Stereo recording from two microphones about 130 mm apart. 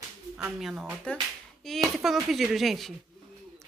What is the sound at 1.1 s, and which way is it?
Speech, 10° left (ahead or behind).